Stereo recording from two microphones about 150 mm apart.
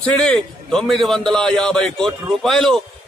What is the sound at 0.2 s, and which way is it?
A man's voice, 5° left (ahead or behind).